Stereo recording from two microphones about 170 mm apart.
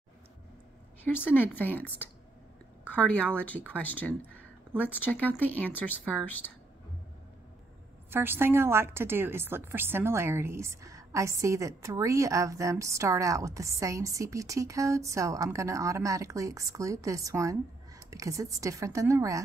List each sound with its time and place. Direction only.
1.3 s speech: 10° left (ahead or behind)
8.1 s a woman's voice: 15° right (ahead or behind)